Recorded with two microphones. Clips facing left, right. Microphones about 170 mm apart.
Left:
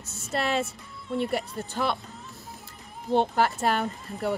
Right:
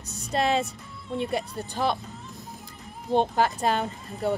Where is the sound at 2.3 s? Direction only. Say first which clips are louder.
Right 2 dB; 15° right (ahead or behind).